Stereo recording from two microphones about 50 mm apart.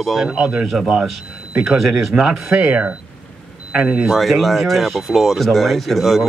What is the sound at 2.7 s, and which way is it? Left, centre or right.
A man's voice, right.